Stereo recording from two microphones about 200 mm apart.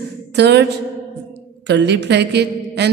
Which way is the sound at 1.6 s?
60° right (ahead or behind).